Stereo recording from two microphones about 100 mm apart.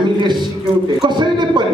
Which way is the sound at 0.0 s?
50° right (ahead or behind).